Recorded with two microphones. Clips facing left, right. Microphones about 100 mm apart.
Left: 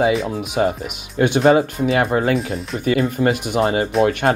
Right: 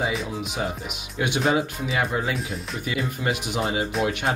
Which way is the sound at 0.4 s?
55° left (ahead or behind).